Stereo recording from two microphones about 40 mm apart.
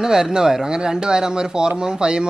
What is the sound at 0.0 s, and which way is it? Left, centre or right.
Speech, centre.